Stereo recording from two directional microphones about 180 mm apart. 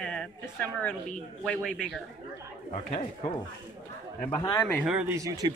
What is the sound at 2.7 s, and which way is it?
Speech, 35° left (ahead or behind).